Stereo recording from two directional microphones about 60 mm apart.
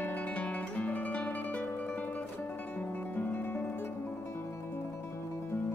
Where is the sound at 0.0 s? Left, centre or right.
Left.